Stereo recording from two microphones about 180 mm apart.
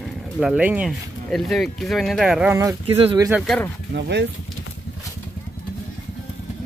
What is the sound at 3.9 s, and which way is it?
Speech, 65° right (ahead or behind).